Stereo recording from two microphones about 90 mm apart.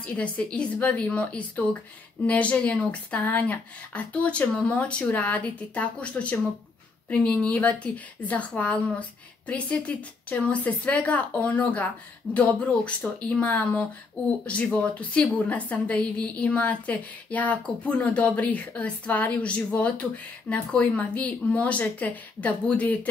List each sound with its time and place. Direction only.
0.0 s a woman's voice: 15° left (ahead or behind)